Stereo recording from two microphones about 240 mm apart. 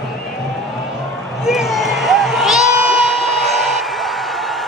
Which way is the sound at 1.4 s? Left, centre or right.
Centre.